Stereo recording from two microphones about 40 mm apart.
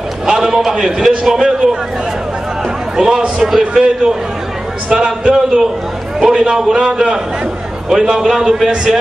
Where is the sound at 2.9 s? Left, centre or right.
Centre.